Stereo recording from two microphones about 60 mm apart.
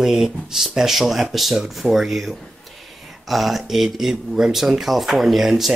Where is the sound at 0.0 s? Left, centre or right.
Centre.